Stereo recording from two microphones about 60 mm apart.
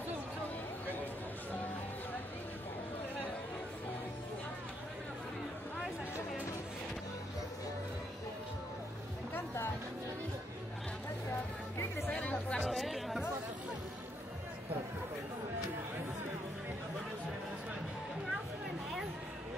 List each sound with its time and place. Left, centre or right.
12.1 s music: left
12.6 s chatter: centre